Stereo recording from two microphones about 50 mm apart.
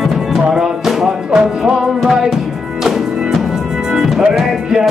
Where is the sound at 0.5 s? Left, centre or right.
Centre.